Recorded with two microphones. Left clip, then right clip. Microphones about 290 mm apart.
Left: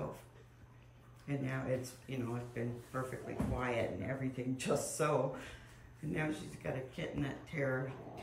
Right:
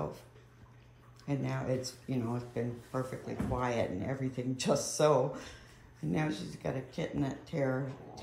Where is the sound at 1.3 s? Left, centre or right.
Centre.